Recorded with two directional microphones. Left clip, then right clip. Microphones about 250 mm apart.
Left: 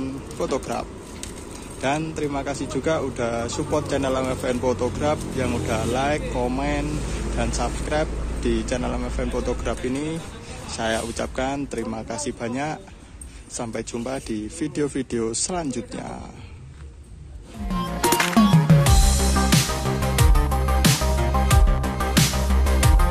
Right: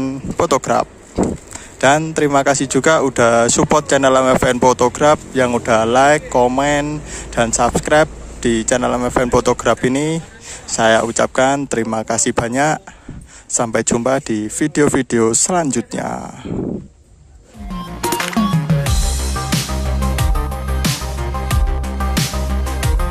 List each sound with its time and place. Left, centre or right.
0.0 s music: right
1.8 s speech: right
18.0 s music: centre